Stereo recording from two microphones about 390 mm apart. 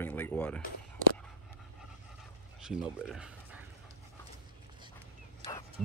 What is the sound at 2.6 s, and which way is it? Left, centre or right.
Speech, centre.